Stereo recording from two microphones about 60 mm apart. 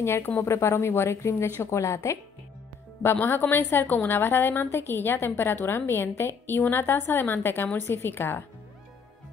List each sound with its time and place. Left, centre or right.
0.0 s speech: left
3.0 s a woman's voice: left